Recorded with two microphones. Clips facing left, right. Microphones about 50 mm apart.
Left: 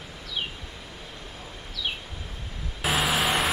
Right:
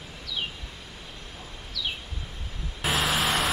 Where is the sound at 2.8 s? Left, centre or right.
Centre.